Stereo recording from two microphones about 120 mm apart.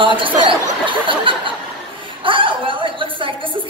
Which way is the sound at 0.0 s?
45° right (ahead or behind).